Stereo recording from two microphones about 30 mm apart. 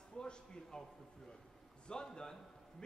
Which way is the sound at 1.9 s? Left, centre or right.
Left.